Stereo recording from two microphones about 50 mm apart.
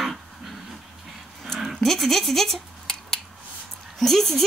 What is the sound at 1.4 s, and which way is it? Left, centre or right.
Scissors, centre.